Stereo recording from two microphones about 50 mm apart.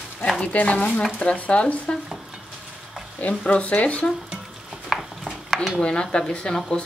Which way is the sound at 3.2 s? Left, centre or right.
Left.